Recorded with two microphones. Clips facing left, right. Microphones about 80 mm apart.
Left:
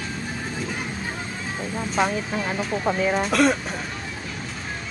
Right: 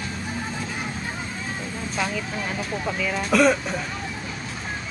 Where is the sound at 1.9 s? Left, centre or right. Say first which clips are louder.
Left 5 dB; left.